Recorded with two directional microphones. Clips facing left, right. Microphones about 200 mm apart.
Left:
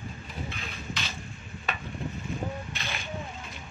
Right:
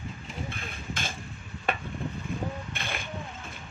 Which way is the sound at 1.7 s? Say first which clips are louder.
Right 5 dB; 55° right (ahead or behind).